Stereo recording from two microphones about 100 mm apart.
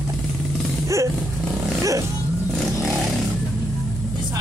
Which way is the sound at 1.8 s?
30° right (ahead or behind).